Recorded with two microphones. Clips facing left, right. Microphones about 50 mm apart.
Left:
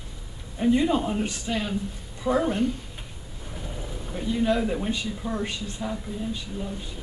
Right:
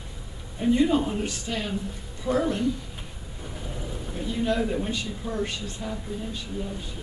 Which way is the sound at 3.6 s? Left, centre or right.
Centre.